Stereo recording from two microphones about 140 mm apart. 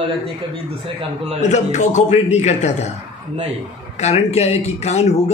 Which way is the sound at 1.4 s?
55° left (ahead or behind).